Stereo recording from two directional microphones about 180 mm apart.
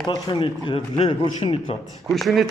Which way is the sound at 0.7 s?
30° left (ahead or behind).